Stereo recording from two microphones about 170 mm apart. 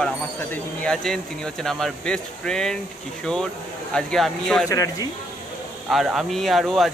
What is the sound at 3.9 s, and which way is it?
Speech, 5° left (ahead or behind).